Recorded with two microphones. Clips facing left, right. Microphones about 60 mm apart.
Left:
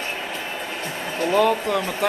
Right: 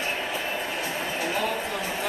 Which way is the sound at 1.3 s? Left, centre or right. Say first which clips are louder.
Left 9 dB; left.